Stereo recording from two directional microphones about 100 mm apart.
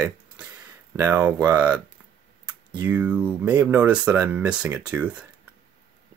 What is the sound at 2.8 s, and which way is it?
Speech, 15° right (ahead or behind).